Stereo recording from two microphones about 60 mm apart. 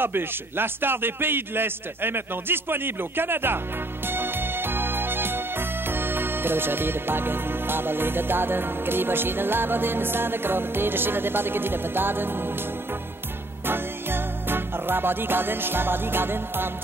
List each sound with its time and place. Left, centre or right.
0.0 s a man's voice: right
4.1 s music: right
13.7 s music: right